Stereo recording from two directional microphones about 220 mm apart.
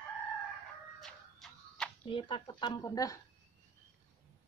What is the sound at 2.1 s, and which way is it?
Speech, 25° left (ahead or behind).